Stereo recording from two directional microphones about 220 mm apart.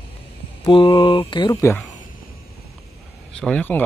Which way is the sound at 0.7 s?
25° left (ahead or behind).